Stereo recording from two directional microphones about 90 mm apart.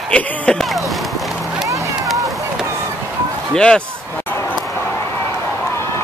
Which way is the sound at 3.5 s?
10° left (ahead or behind).